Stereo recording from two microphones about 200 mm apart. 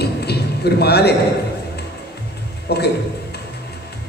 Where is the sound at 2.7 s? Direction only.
55° left (ahead or behind).